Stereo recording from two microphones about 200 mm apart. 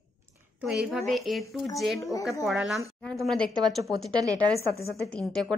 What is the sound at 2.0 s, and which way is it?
Speech, 15° left (ahead or behind).